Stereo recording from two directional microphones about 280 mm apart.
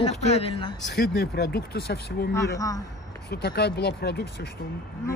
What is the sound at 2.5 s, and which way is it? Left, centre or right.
Speech, centre.